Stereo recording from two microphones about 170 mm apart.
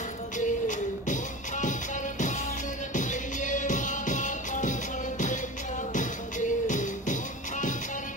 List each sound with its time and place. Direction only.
0.4 s music: 50° left (ahead or behind)
5.9 s music: 50° left (ahead or behind)